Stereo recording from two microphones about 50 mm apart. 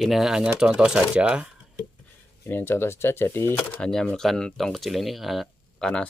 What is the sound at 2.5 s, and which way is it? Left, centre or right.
Speech, left.